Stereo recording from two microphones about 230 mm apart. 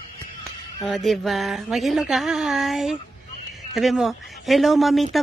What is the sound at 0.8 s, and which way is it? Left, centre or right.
Speech, centre.